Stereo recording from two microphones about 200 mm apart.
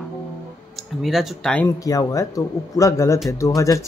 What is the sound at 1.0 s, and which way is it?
Speech, centre (ahead or behind).